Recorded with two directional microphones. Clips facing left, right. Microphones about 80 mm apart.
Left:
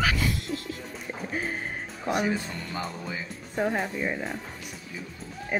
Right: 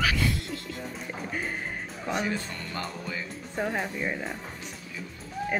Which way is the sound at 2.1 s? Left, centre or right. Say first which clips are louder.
Left 3 dB; centre.